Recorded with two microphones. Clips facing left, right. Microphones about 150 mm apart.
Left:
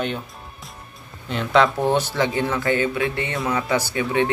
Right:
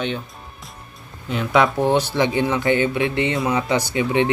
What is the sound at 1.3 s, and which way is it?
Speech, 5° right (ahead or behind).